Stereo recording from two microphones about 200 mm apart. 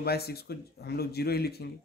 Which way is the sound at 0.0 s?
50° left (ahead or behind).